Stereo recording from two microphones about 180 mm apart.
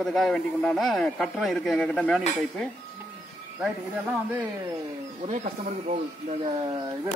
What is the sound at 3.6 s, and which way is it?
Speech, 5° right (ahead or behind).